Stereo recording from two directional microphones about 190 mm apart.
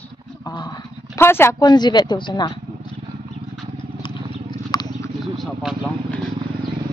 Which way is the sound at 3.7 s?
25° left (ahead or behind).